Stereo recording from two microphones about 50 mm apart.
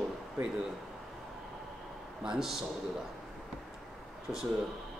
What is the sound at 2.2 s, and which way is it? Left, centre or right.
Speech, centre.